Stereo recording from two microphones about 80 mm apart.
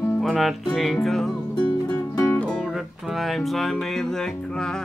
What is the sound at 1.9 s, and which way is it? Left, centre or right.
Music, left.